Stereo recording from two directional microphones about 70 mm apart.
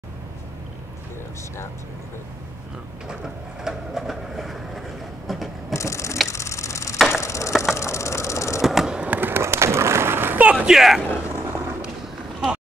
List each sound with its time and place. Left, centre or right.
3.6 s train: centre
5.7 s mechanisms: left
7.2 s ratchet: left
8.6 s a sound: centre
9.1 s skateboard: right
10.7 s speech: centre
11.2 s a sound: right